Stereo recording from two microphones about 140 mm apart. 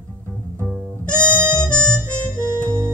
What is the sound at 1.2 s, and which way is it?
Harmonica, 15° right (ahead or behind).